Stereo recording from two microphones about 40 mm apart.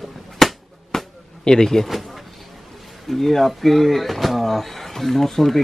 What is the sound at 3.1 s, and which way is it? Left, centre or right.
Speech, centre.